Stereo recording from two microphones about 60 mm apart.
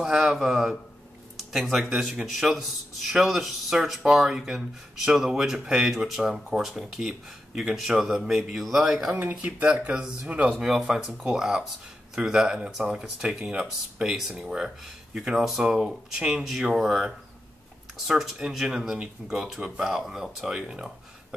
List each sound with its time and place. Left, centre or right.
0.0 s a man's voice: centre
9.3 s speech: centre
10.5 s speech: centre
15.1 s speech: centre